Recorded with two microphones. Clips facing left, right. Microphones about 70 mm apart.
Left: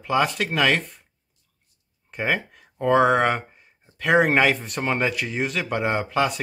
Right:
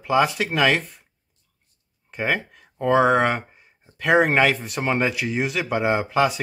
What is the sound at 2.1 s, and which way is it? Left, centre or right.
Speech, centre.